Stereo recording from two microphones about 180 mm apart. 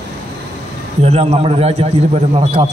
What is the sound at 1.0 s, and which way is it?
A man's voice, 35° right (ahead or behind).